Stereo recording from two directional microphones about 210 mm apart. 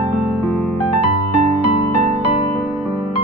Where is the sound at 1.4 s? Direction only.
30° right (ahead or behind).